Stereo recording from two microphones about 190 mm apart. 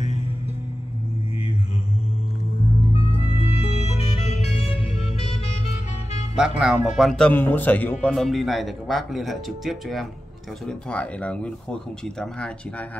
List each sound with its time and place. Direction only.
3.1 s music: 30° left (ahead or behind)
6.3 s speech: 5° right (ahead or behind)